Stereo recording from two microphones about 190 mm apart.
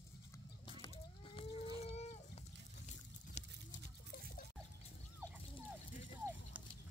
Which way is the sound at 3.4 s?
35° left (ahead or behind).